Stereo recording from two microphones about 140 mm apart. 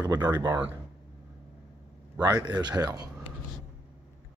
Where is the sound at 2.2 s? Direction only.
25° right (ahead or behind).